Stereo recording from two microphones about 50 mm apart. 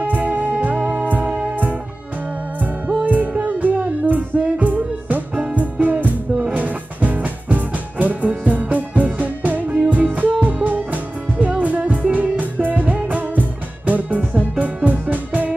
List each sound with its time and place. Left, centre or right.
0.0 s music: right
1.2 s music: right
1.5 s music: right
3.1 s music: right